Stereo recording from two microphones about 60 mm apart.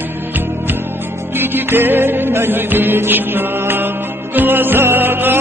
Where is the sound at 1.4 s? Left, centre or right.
Right.